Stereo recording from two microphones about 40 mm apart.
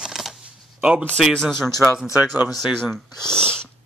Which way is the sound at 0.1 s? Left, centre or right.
Centre.